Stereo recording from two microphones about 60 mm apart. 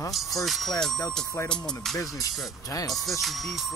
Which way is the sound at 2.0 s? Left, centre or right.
Left.